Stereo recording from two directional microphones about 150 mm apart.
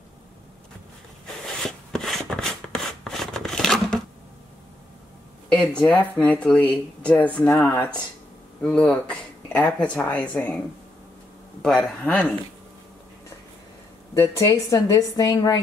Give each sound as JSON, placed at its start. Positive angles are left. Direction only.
{"t": 1.2, "sound": "a sound", "side_deg": 0}
{"t": 5.7, "sound": "speech", "side_deg": 10}
{"t": 11.6, "sound": "speech", "side_deg": 5}
{"t": 14.1, "sound": "speech", "side_deg": 20}